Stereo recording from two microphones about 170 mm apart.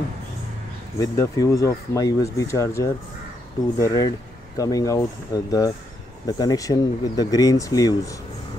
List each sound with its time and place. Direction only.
0.9 s speech: 20° left (ahead or behind)